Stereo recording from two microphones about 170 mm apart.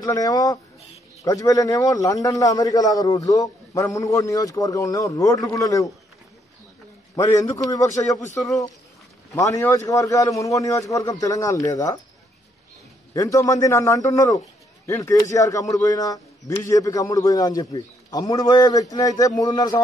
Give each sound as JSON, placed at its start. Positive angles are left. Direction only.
{"t": 0.0, "sound": "a man's voice", "side_deg": 20}
{"t": 7.2, "sound": "a man's voice", "side_deg": 15}
{"t": 9.3, "sound": "a man's voice", "side_deg": 20}
{"t": 13.1, "sound": "a man's voice", "side_deg": 20}